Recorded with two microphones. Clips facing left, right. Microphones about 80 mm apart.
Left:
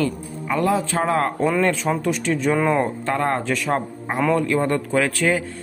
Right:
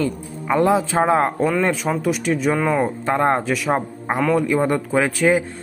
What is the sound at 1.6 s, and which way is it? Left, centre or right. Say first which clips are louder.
Speech: even; centre.